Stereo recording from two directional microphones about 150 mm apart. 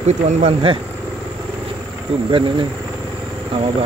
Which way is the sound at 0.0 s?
50° right (ahead or behind).